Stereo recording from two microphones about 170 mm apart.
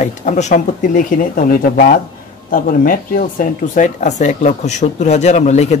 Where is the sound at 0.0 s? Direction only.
45° left (ahead or behind).